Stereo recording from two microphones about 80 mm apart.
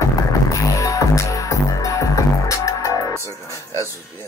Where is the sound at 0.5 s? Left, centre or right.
Left.